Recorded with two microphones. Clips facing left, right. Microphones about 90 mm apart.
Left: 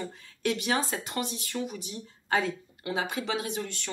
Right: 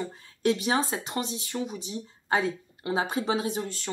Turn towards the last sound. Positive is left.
turn(degrees=-35)  # may be behind; listen again after turning